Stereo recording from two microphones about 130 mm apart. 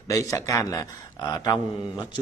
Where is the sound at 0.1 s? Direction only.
25° left (ahead or behind).